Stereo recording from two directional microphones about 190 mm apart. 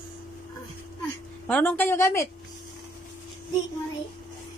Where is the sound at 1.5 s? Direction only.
10° left (ahead or behind).